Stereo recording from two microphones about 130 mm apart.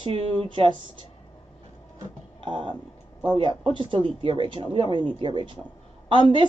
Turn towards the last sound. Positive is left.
turn(degrees=-40)  # may be behind; listen again after turning